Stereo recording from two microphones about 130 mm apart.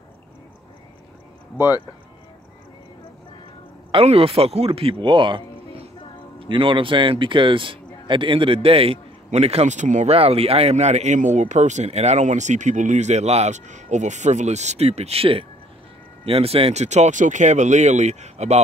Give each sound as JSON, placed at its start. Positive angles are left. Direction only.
{"t": 3.9, "sound": "a man's voice", "side_deg": -50}
{"t": 10.1, "sound": "speech", "side_deg": -50}